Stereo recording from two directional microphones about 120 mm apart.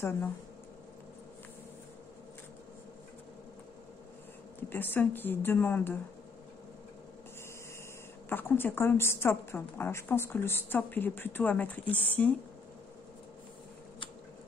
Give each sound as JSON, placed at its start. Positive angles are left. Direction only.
{"t": 4.6, "sound": "a woman's voice", "side_deg": 15}
{"t": 8.3, "sound": "a woman's voice", "side_deg": 15}